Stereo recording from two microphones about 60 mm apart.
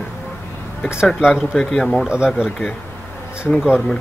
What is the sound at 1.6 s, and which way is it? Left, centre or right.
Speech, centre.